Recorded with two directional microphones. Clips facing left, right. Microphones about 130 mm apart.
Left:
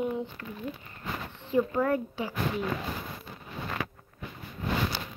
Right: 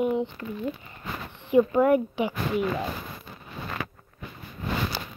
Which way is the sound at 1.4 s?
15° right (ahead or behind).